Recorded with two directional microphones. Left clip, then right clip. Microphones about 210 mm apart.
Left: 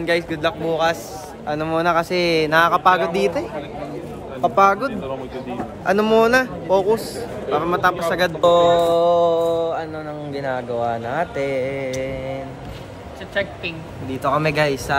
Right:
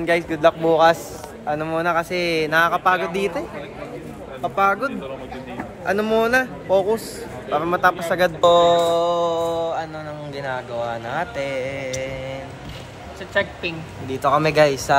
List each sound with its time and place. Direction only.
0.0 s speech: centre (ahead or behind)
1.5 s speech: 10° left (ahead or behind)
4.4 s music: 20° left (ahead or behind)
5.9 s speech: 15° left (ahead or behind)
8.4 s music: 15° left (ahead or behind)
13.3 s speech: 25° right (ahead or behind)
14.2 s speech: 5° left (ahead or behind)